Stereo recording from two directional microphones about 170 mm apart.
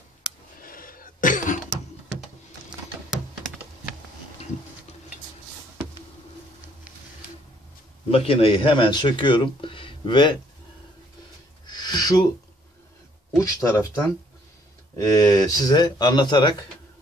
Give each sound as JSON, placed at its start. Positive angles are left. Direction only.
{"t": 0.6, "sound": "cough", "side_deg": 55}
{"t": 8.1, "sound": "speech", "side_deg": 35}
{"t": 11.6, "sound": "a sound", "side_deg": 25}
{"t": 13.4, "sound": "speech", "side_deg": 20}